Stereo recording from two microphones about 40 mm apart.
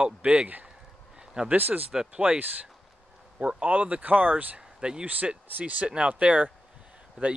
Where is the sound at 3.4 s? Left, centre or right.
Right.